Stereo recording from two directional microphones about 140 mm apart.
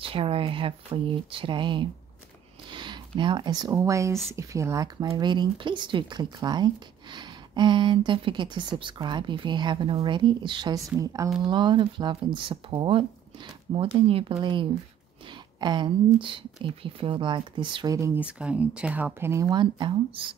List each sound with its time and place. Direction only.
0.0 s speech: 40° right (ahead or behind)
2.7 s a sound: 35° right (ahead or behind)
3.7 s speech: 20° right (ahead or behind)
17.9 s speech: 20° right (ahead or behind)
18.2 s speech: 10° right (ahead or behind)
19.5 s speech: 35° right (ahead or behind)